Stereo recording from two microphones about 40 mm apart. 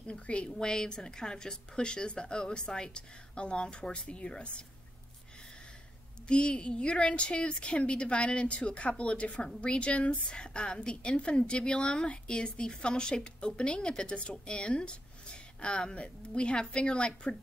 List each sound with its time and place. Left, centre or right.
0.0 s a woman's voice: left
0.7 s a woman's voice: centre
6.2 s a woman's voice: left